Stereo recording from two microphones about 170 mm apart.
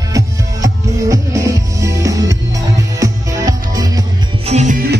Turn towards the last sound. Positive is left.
turn(degrees=-45)  # may be behind; listen again after turning